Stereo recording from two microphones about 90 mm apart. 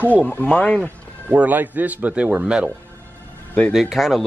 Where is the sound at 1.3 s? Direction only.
20° right (ahead or behind).